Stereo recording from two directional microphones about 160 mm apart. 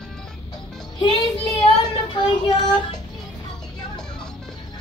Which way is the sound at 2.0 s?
30° left (ahead or behind).